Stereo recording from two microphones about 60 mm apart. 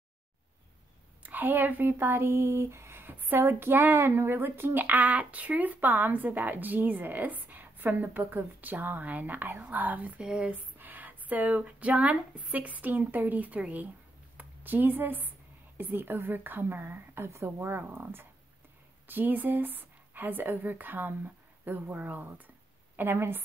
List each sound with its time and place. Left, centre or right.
1.2 s speech: right
10.2 s speech: centre
10.5 s a woman's voice: right
22.9 s speech: right